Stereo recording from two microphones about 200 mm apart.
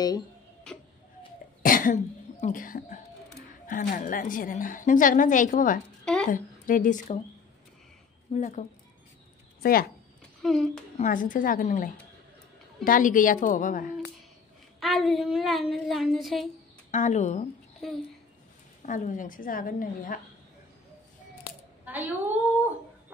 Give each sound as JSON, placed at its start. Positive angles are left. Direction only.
{"t": 1.6, "sound": "cough", "side_deg": 45}
{"t": 2.4, "sound": "a woman's voice", "side_deg": 45}
{"t": 8.3, "sound": "a woman's voice", "side_deg": 40}
{"t": 10.4, "sound": "speech", "side_deg": 0}
{"t": 11.0, "sound": "a woman's voice", "side_deg": 40}
{"t": 14.8, "sound": "speech", "side_deg": 0}
{"t": 16.9, "sound": "a woman's voice", "side_deg": 35}
{"t": 18.8, "sound": "a woman's voice", "side_deg": 40}
{"t": 21.8, "sound": "a woman's voice", "side_deg": -10}